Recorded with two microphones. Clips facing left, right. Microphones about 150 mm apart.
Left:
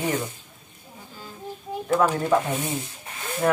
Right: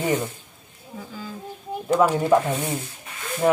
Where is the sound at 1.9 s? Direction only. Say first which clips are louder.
Right 2 dB; 15° right (ahead or behind).